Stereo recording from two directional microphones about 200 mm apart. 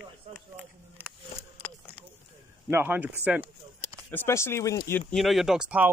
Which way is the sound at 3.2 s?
10° right (ahead or behind).